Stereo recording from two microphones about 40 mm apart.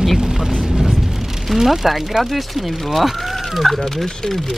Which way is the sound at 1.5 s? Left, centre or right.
Centre.